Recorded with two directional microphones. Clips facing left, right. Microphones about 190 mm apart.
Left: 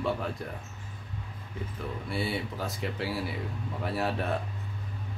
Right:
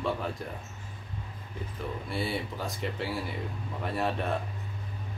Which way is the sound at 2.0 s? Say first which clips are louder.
Left 1 dB; centre (ahead or behind).